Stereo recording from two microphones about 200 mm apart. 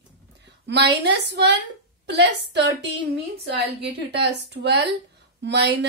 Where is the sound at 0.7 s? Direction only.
55° right (ahead or behind).